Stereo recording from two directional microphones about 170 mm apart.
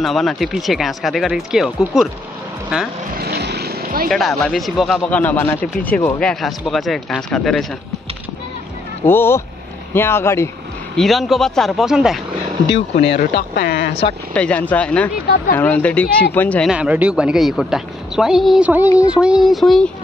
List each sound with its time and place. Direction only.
0.0 s a man's voice: centre (ahead or behind)
3.2 s vehicle: 70° right (ahead or behind)
4.1 s a man's voice: centre (ahead or behind)
9.0 s speech: 15° left (ahead or behind)
11.0 s a man's voice: centre (ahead or behind)
12.9 s speech: 65° left (ahead or behind)
14.3 s speech: 10° left (ahead or behind)
15.1 s speech: 60° left (ahead or behind)
15.5 s speech: 10° left (ahead or behind)
16.6 s a man's voice: 5° right (ahead or behind)